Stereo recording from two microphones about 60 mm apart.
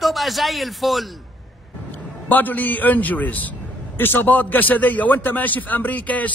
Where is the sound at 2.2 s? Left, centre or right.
Left.